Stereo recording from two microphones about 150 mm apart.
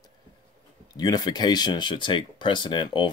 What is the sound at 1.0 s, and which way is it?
Speech, 25° left (ahead or behind).